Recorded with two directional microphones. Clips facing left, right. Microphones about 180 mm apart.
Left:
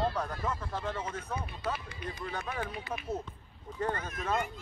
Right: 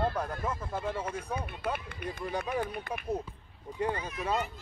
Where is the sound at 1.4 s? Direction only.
55° right (ahead or behind).